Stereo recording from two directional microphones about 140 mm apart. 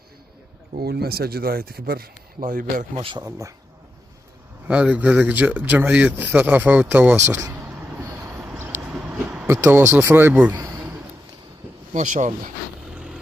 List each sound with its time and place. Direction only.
0.7 s speech: 90° right; by 2.9 s 75° right (ahead or behind)
2.9 s speech: 40° right (ahead or behind)
3.3 s speech: 25° right (ahead or behind)
4.6 s speech: 10° right (ahead or behind)
8.1 s boat: 20° right (ahead or behind)
8.5 s vehicle: 15° right (ahead or behind)
8.9 s a sound: 5° right (ahead or behind)
9.5 s speech: 15° right (ahead or behind)
10.6 s a sound: 25° right (ahead or behind)
11.9 s speech: 60° right (ahead or behind)
12.9 s vehicle: 5° right (ahead or behind)